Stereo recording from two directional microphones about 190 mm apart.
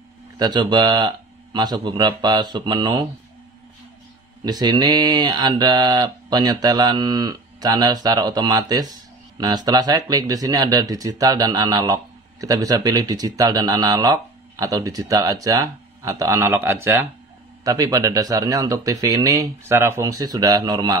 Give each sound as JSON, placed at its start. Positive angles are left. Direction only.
{"t": 0.4, "sound": "speech", "side_deg": -25}
{"t": 4.5, "sound": "speech", "side_deg": -20}